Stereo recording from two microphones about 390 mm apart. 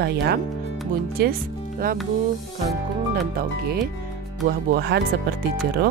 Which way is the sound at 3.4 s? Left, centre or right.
Right.